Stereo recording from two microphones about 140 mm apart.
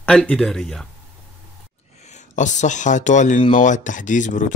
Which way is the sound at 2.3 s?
60° left (ahead or behind).